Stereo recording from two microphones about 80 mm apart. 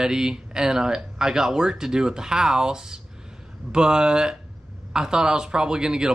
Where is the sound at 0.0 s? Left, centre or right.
Centre.